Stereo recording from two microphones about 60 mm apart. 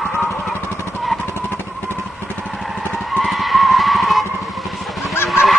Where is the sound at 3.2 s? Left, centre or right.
Centre.